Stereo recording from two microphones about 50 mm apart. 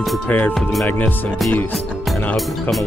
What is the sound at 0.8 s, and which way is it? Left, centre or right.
Speech, left.